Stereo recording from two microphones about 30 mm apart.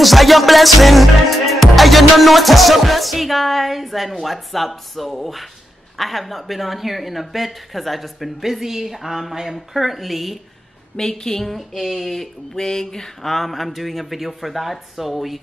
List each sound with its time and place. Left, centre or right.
0.0 s music: centre
8.4 s a woman's voice: centre
11.0 s a woman's voice: centre
12.5 s a sound: centre
13.2 s music: centre